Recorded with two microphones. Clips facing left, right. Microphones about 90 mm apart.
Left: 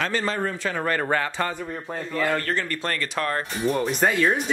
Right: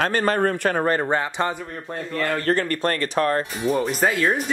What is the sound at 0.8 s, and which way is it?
Speech, 25° right (ahead or behind).